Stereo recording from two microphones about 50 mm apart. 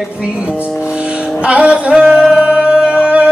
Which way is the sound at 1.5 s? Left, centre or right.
Right.